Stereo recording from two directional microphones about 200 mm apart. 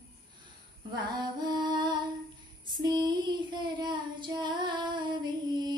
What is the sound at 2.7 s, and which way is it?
Child singing, 20° right (ahead or behind).